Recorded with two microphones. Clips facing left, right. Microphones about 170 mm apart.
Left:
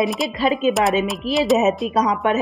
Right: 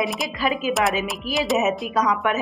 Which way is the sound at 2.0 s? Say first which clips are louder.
Even; 30° left (ahead or behind).